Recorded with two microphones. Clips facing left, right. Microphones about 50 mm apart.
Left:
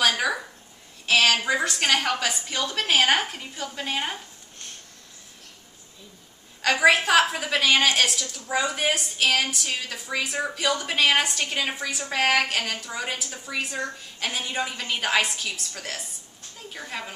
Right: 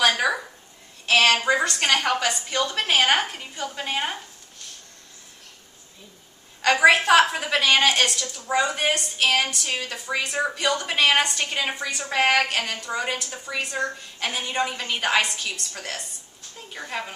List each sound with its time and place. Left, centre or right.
0.0 s a sound: centre
1.0 s a woman's voice: centre
6.6 s a woman's voice: centre